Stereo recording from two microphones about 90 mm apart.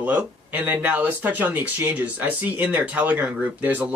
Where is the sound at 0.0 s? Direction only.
15° right (ahead or behind).